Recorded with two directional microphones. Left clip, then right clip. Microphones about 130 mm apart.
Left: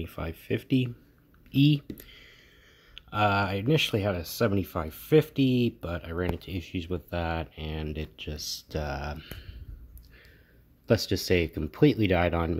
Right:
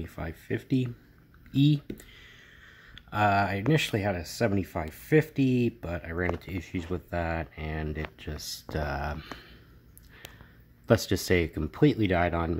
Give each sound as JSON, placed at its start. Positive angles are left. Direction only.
{"t": 0.0, "sound": "speech", "side_deg": 0}
{"t": 2.9, "sound": "speech", "side_deg": -10}
{"t": 9.2, "sound": "speech", "side_deg": -40}
{"t": 10.9, "sound": "speech", "side_deg": -20}